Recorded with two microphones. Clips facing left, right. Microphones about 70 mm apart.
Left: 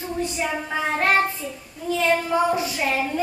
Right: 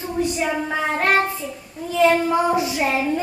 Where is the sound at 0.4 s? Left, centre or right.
Centre.